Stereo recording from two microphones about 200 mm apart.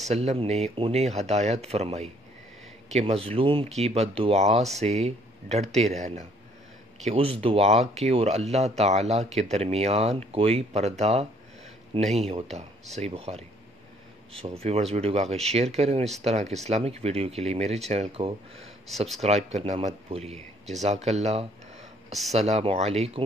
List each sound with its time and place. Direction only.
0.1 s speech: 30° right (ahead or behind)
14.6 s speech: 30° right (ahead or behind)